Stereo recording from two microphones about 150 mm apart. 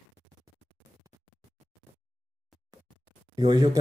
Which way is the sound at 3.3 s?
25° right (ahead or behind).